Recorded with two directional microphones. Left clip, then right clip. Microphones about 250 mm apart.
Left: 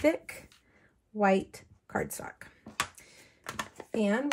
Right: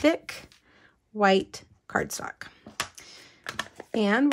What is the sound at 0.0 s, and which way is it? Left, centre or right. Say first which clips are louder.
Speech: right 4 dB; centre.